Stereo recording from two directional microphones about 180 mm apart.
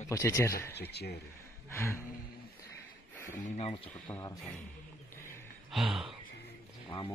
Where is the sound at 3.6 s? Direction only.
30° left (ahead or behind).